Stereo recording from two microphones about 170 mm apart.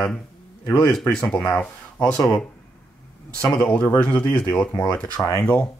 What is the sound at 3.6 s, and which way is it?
Speech, 10° left (ahead or behind).